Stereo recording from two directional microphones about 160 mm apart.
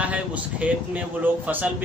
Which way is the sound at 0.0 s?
10° right (ahead or behind).